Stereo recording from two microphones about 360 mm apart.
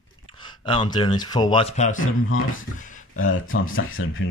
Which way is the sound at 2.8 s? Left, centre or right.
Left.